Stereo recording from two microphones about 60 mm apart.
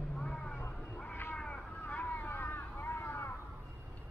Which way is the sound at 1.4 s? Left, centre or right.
Left.